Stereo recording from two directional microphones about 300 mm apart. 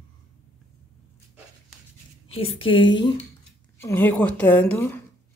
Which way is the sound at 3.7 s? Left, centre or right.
Centre.